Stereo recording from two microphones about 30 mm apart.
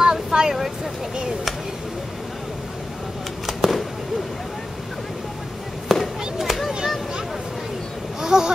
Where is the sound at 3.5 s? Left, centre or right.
Centre.